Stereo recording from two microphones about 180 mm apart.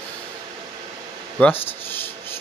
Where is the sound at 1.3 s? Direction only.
10° left (ahead or behind).